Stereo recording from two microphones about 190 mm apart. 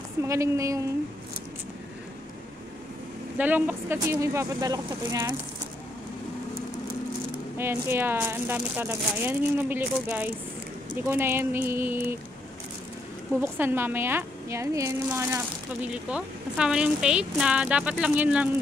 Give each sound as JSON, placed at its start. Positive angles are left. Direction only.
{"t": 0.2, "sound": "a woman's voice", "side_deg": -15}
{"t": 3.3, "sound": "a woman's voice", "side_deg": -10}
{"t": 7.5, "sound": "a woman's voice", "side_deg": -10}
{"t": 13.4, "sound": "a woman's voice", "side_deg": -10}